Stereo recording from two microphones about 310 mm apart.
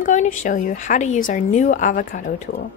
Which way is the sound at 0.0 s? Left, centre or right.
Left.